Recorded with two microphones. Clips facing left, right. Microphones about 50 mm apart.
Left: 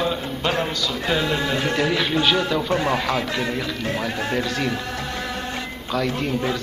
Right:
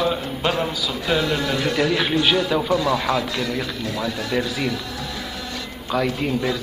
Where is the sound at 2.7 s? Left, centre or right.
Left.